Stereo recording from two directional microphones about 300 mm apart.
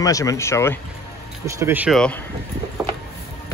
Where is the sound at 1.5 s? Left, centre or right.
Centre.